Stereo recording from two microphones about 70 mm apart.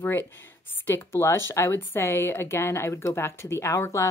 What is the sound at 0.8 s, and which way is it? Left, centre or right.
Speech, left.